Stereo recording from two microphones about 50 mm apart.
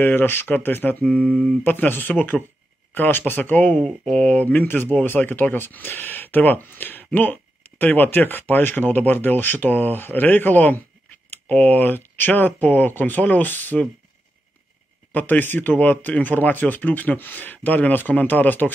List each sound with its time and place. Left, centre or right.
0.0 s speech: left
3.8 s speech: centre
4.2 s speech: left
15.1 s speech: left